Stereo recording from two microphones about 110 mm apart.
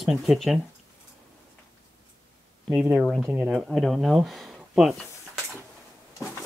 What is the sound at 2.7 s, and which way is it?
Speech, 10° right (ahead or behind).